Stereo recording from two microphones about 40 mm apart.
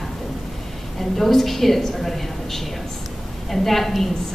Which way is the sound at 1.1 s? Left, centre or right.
Centre.